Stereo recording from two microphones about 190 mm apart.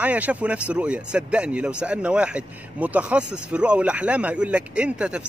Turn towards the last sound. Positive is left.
turn(degrees=-5)  # may be behind; listen again after turning